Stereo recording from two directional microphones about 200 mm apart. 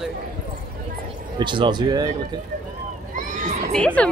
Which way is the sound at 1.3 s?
25° right (ahead or behind).